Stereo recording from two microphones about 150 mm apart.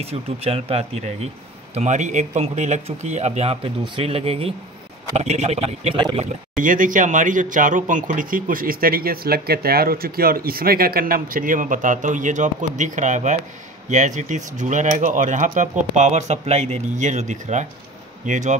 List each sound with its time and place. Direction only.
0.0 s speech: 40° right (ahead or behind)
6.6 s speech: 60° right (ahead or behind)